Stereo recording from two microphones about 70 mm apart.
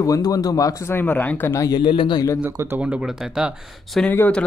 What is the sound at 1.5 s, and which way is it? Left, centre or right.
Speech, left.